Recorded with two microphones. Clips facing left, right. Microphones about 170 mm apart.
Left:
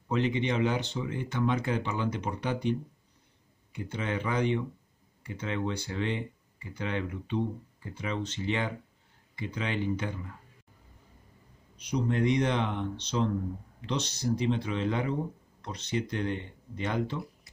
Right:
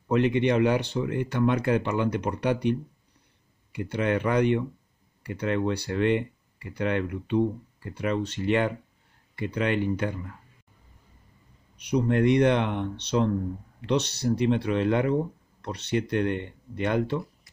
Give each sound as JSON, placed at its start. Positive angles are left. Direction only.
{"t": 0.1, "sound": "speech", "side_deg": -60}
{"t": 11.7, "sound": "speech", "side_deg": -60}